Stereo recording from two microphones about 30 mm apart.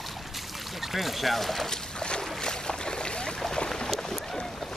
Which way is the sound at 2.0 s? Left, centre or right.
Left.